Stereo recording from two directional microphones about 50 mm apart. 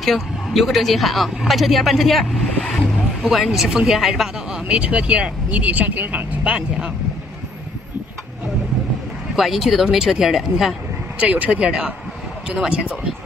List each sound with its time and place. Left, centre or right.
0.0 s speech: centre; by 6.9 s right
9.3 s speech: centre
11.1 s speech: right